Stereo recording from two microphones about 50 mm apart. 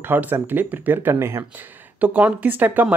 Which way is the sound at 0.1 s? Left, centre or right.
Right.